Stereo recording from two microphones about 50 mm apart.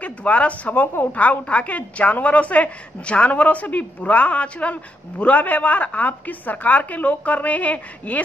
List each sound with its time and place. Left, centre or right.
0.0 s a woman's voice: left